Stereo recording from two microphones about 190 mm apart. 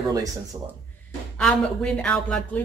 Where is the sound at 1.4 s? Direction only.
5° left (ahead or behind).